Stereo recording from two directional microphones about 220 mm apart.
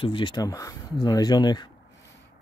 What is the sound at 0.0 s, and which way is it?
Speech, 25° left (ahead or behind).